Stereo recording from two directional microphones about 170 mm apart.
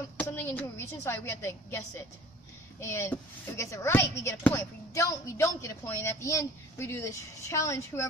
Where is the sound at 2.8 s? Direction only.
15° left (ahead or behind).